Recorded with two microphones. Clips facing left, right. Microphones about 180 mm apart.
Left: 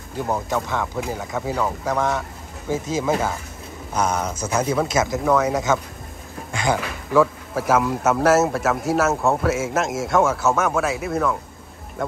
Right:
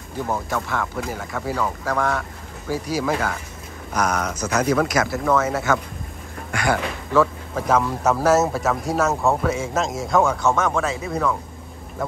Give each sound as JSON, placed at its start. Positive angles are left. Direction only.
{"t": 0.1, "sound": "speech", "side_deg": 15}
{"t": 7.5, "sound": "a man's voice", "side_deg": 5}